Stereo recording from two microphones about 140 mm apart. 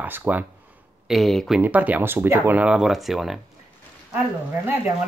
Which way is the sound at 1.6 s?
10° right (ahead or behind).